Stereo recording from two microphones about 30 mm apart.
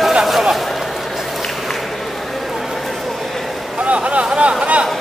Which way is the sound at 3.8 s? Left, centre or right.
Right.